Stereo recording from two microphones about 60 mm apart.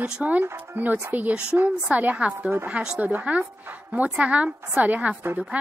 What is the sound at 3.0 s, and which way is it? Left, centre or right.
A woman's voice, right.